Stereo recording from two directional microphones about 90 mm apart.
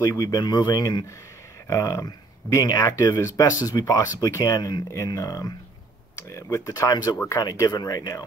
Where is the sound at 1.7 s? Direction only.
40° left (ahead or behind).